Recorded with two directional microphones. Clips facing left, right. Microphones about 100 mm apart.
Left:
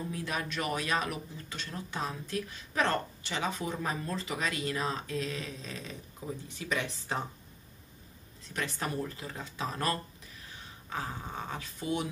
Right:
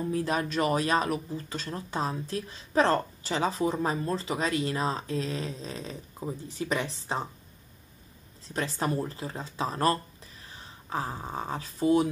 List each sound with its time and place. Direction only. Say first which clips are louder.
0.1 s speech: right 7 dB; 35° right (ahead or behind)
8.5 s speech: right 5 dB; 30° right (ahead or behind)